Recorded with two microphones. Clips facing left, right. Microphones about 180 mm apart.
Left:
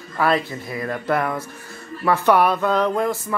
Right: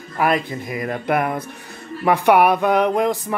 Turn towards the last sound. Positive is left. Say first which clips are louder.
# right 2 dB
turn(degrees=-15)  # may be behind; listen again after turning